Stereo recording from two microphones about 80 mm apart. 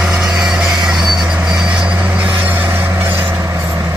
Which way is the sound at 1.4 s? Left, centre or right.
Centre.